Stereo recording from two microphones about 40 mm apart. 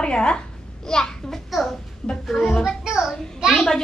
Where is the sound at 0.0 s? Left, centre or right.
Left.